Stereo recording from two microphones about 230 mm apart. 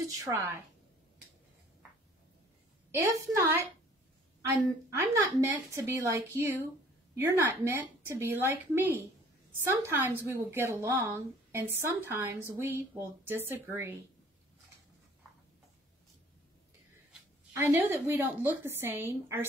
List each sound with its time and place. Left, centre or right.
0.0 s a woman's voice: centre
2.9 s speech: centre
5.2 s speech: centre
17.6 s speech: centre